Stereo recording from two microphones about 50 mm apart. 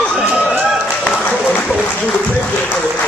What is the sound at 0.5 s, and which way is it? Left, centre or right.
Run, centre.